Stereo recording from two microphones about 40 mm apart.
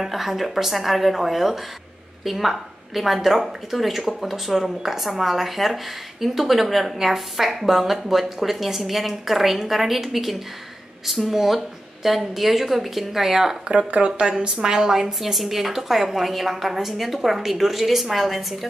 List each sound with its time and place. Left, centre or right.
0.0 s a woman's voice: centre
13.7 s a woman's voice: right; by 18.7 s centre